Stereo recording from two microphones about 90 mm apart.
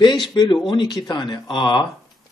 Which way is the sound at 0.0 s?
55° left (ahead or behind).